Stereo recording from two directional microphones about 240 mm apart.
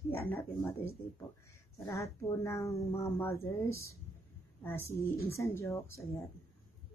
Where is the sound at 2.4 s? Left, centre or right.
Centre.